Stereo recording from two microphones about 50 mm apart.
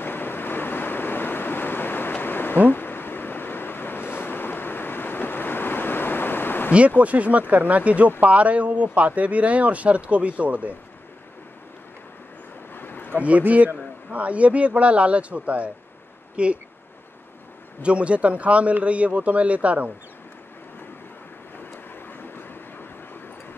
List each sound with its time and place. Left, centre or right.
0.0 s waves: left
7.0 s speech: right
12.7 s a sound: left
13.4 s a man's voice: right
17.8 s speech: right
22.2 s vehicle: left